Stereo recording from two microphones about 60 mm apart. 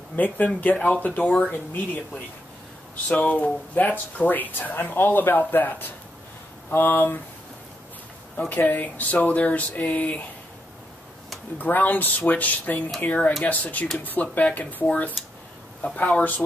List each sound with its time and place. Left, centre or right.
0.1 s speech: left
3.1 s speech: left
8.5 s speech: left
11.5 s speech: left
15.2 s speech: centre
15.8 s speech: left